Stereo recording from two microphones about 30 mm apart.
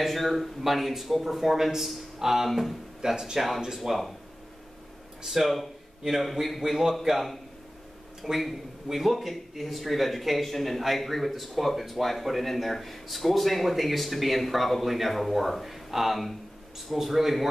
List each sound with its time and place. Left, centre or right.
0.0 s speech: centre
3.7 s speech: centre
5.2 s speech: centre
6.0 s speech: right
6.8 s speech: centre
8.4 s a man's voice: centre